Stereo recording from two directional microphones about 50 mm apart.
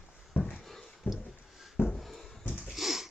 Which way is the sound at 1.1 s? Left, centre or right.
Left.